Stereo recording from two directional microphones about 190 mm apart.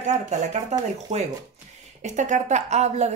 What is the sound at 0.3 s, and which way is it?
Speech, 40° right (ahead or behind).